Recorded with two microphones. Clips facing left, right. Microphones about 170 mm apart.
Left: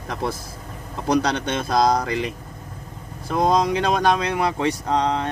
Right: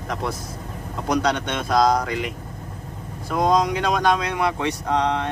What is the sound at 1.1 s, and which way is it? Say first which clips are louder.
Speech: left 1 dB; 30° left (ahead or behind).